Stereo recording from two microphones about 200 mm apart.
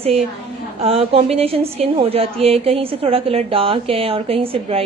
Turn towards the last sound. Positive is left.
turn(degrees=-30)  # may be behind; listen again after turning